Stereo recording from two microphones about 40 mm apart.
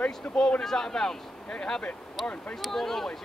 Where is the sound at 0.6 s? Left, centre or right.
Centre.